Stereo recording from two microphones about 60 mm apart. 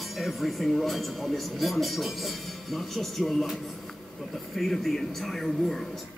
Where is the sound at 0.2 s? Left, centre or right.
Centre.